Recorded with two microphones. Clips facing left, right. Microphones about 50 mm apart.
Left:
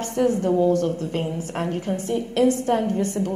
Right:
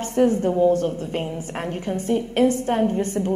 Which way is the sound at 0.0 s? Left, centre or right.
Right.